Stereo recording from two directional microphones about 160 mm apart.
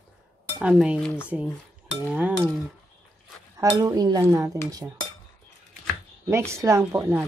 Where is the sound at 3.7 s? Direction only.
25° right (ahead or behind).